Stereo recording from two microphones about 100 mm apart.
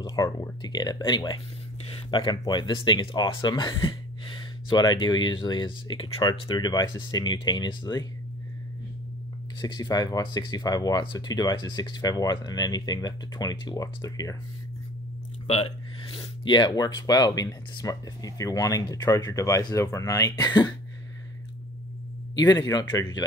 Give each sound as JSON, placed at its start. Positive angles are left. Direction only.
{"t": 0.0, "sound": "speech", "side_deg": 35}
{"t": 6.5, "sound": "speech", "side_deg": 40}
{"t": 9.6, "sound": "speech", "side_deg": 45}
{"t": 15.6, "sound": "speech", "side_deg": 55}
{"t": 22.3, "sound": "speech", "side_deg": 45}